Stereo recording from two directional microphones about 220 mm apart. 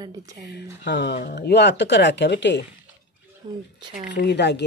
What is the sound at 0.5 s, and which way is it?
Speech, 50° left (ahead or behind).